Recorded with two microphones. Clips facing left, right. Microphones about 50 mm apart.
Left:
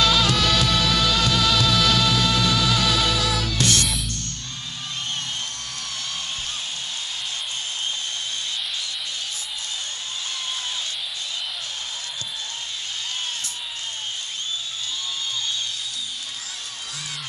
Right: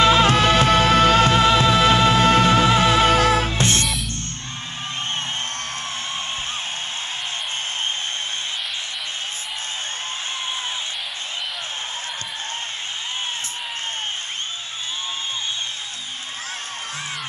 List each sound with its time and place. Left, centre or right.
0.0 s music: right